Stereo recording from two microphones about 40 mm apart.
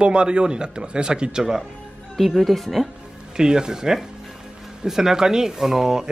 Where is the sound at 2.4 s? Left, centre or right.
Centre.